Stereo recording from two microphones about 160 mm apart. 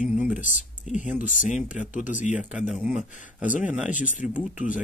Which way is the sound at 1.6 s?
5° right (ahead or behind).